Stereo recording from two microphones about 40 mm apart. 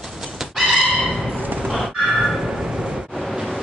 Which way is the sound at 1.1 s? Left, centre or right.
Centre.